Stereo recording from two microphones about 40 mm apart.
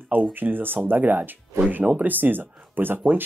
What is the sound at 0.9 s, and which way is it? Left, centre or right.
Speech, right.